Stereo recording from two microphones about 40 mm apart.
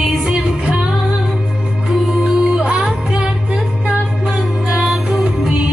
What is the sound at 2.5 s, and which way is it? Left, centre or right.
Music, right.